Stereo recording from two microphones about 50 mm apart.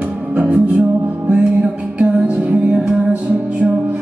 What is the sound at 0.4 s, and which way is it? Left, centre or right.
Music, right.